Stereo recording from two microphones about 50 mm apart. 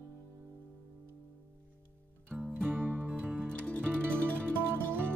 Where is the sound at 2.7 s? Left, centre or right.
Right.